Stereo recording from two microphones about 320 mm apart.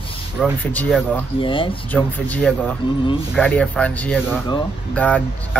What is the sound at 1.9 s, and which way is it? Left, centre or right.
Speech, centre.